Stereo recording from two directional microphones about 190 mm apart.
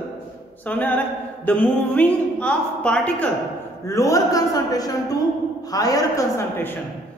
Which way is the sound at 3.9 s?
15° left (ahead or behind).